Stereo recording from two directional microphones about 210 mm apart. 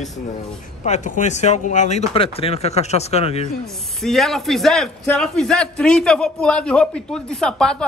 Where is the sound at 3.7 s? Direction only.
Centre (ahead or behind).